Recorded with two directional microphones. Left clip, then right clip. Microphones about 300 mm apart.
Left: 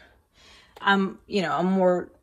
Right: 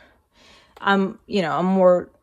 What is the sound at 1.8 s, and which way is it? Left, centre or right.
Speech, right.